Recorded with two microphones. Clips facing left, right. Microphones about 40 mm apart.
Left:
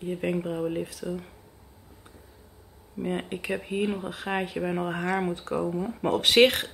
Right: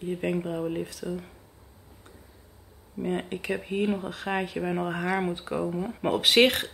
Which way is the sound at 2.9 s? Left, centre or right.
Centre.